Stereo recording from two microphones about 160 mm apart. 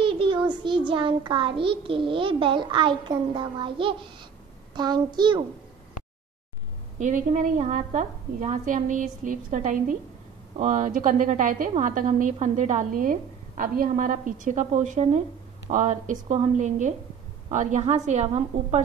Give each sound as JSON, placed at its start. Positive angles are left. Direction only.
{"t": 0.0, "sound": "child singing", "side_deg": -30}
{"t": 4.7, "sound": "a child's voice", "side_deg": -25}
{"t": 7.0, "sound": "a woman's voice", "side_deg": -50}